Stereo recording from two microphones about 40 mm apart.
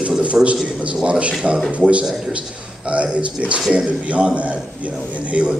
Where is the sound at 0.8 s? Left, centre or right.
Right.